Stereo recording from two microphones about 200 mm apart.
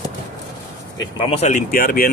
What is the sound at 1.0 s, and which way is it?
Speech, 30° left (ahead or behind).